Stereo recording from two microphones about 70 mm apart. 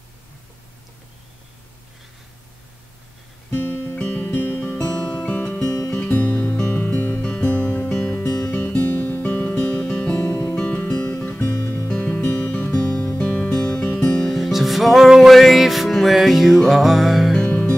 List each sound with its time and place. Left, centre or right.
3.7 s music: left
4.0 s music: centre
11.2 s music: left
11.9 s music: centre
14.3 s music: centre
17.5 s music: left